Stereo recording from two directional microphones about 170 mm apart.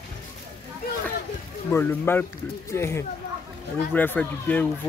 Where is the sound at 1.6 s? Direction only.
15° left (ahead or behind).